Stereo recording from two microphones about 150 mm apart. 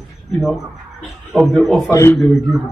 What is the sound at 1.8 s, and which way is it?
Speech, 20° left (ahead or behind).